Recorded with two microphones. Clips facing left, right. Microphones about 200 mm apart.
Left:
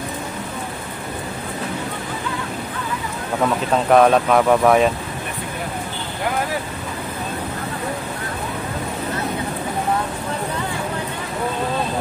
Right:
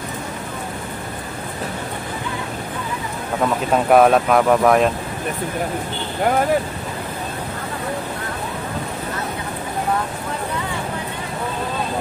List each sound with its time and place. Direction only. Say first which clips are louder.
3.7 s speech: right 1 dB; 5° right (ahead or behind)